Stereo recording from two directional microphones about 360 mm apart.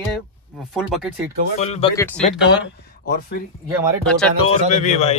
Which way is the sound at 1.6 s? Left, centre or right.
Centre.